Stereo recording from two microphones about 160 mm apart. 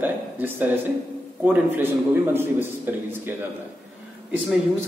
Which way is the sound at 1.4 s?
10° right (ahead or behind).